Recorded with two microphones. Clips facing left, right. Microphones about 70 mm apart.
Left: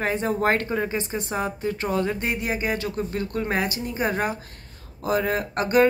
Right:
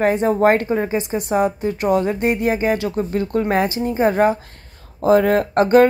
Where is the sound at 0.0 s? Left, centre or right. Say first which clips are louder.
Right 8 dB; right.